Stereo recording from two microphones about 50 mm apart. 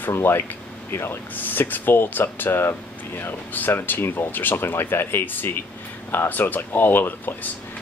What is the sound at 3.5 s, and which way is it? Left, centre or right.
Speech, left.